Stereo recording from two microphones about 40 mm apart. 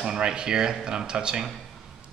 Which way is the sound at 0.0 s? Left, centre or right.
Centre.